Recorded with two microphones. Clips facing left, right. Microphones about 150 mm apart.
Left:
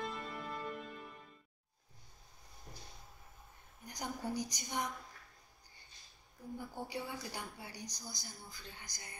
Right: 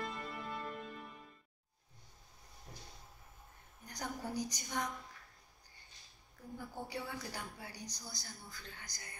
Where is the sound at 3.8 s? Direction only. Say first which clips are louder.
Left 2 dB; 20° left (ahead or behind).